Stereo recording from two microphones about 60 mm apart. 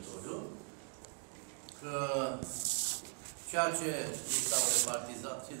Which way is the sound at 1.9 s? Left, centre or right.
Centre.